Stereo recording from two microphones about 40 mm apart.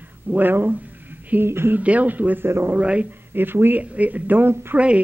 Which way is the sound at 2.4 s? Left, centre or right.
Right.